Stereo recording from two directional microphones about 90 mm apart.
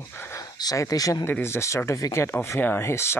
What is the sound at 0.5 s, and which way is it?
Speech, 45° left (ahead or behind).